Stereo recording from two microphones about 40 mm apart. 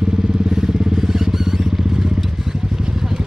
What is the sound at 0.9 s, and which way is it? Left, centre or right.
Vehicle, centre.